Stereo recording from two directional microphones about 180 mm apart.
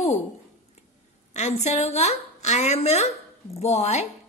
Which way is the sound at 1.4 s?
40° left (ahead or behind).